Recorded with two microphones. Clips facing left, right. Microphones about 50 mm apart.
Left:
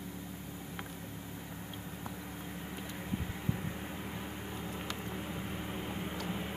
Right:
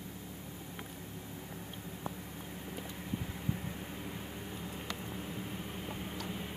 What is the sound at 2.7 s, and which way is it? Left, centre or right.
Vehicle, centre.